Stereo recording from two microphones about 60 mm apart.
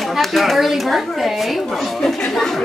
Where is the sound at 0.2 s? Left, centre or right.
Centre.